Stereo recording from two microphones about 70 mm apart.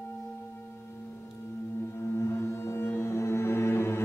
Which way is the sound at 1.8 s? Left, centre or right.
Left.